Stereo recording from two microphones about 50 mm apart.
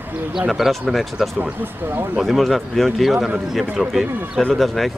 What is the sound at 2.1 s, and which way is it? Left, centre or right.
Speech, centre.